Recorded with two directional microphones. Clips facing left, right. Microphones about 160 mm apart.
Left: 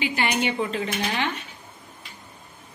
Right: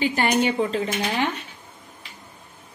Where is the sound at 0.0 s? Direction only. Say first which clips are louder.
Right 4 dB; 45° right (ahead or behind).